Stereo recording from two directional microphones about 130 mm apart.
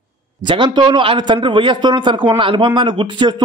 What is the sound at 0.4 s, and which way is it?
A man's voice, 40° right (ahead or behind).